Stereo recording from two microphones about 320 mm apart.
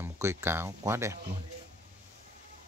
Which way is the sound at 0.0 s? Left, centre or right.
Centre.